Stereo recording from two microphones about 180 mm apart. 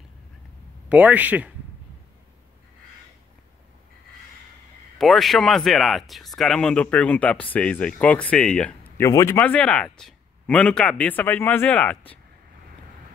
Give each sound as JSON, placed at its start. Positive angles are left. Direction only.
{"t": 0.8, "sound": "a man's voice", "side_deg": -10}
{"t": 4.9, "sound": "speech", "side_deg": 0}
{"t": 8.9, "sound": "speech", "side_deg": 15}